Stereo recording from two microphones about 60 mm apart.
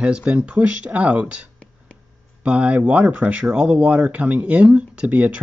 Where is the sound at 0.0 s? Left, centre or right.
Centre.